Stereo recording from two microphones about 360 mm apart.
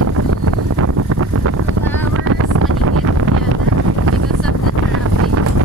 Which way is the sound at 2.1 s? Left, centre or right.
Right.